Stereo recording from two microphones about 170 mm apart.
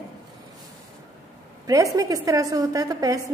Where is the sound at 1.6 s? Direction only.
20° right (ahead or behind).